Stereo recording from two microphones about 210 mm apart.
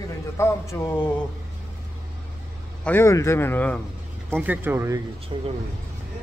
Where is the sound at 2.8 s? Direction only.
10° left (ahead or behind).